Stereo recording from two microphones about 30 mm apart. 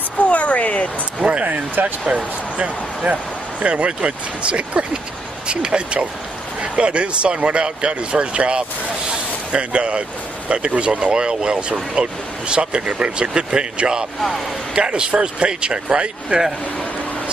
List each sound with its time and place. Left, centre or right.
0.3 s a sound: left
1.4 s speech: right
2.0 s speech: right
3.1 s a man's voice: right